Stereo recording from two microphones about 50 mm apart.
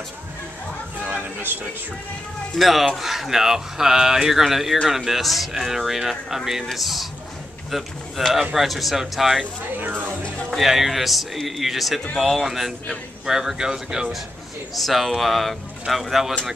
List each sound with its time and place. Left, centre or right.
1.0 s a sound: right
2.5 s speech: centre
9.8 s speech: right
10.5 s speech: centre
14.8 s speech: centre